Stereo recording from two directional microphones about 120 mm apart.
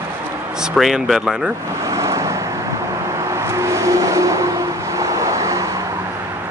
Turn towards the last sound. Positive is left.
turn(degrees=-25)  # may be behind; listen again after turning